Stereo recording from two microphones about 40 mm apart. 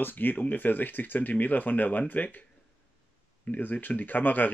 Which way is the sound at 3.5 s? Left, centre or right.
Left.